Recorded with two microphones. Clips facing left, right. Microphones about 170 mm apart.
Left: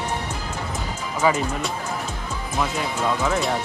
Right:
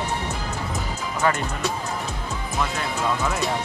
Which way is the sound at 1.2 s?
Centre (ahead or behind).